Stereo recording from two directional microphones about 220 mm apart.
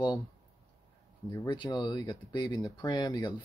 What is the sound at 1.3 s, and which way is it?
Speech, 15° left (ahead or behind).